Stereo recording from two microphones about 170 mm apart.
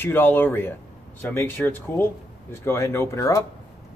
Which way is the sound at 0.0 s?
10° left (ahead or behind).